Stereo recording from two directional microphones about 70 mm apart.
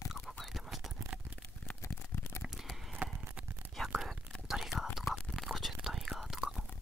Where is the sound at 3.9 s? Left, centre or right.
Centre.